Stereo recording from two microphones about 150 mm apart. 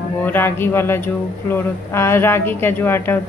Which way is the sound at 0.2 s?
15° left (ahead or behind).